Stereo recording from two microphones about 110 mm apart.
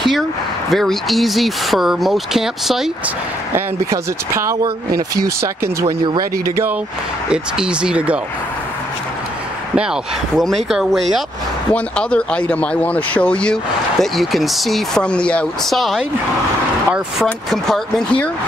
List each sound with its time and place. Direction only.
0.7 s speech: centre (ahead or behind)
3.5 s speech: 25° right (ahead or behind)
7.2 s speech: 10° right (ahead or behind)
10.3 s speech: centre (ahead or behind)
11.7 s speech: 10° left (ahead or behind)